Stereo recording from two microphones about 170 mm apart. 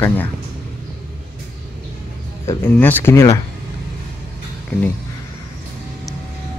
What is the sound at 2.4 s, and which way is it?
Speech, 10° left (ahead or behind).